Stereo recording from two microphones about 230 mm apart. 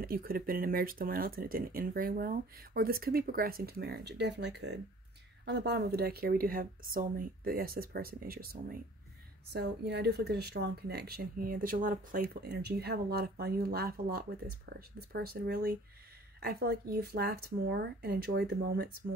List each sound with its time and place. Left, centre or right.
0.0 s speech: right